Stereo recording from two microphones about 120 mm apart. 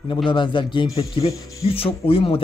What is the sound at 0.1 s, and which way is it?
Speech, 45° left (ahead or behind).